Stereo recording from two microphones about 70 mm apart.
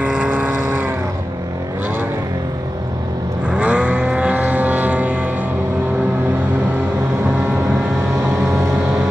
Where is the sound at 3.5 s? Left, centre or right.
Centre.